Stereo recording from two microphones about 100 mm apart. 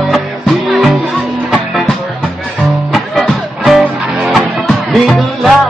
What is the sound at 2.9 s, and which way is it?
Music, centre (ahead or behind).